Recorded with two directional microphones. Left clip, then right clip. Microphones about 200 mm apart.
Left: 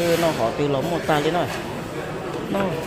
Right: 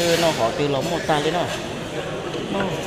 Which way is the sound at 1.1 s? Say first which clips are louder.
Even; 15° left (ahead or behind).